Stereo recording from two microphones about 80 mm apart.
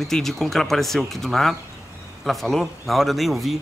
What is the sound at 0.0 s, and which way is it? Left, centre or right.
Speech, centre.